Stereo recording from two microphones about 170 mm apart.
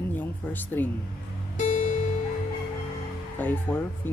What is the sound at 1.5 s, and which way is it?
Music, 45° left (ahead or behind).